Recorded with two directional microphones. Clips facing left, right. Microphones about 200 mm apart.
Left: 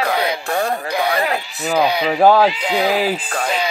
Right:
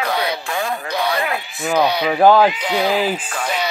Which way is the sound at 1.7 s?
10° left (ahead or behind).